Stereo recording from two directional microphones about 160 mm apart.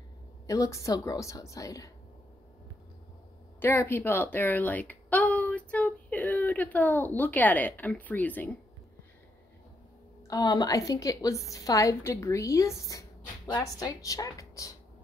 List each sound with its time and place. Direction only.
0.5 s a woman's voice: 20° left (ahead or behind)
3.5 s a woman's voice: 15° left (ahead or behind)
10.2 s a woman's voice: 25° left (ahead or behind)